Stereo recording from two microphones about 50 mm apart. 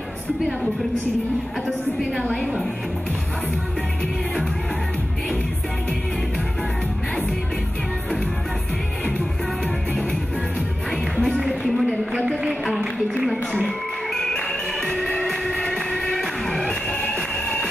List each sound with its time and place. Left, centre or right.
11.4 s a sound: centre
13.5 s music: centre
16.6 s music: left